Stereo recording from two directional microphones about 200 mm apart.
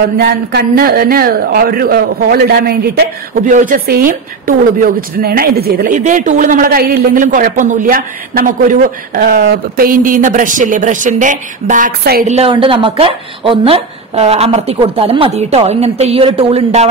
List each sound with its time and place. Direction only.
0.0 s speech: 55° right (ahead or behind)
12.3 s a woman's voice: 30° right (ahead or behind)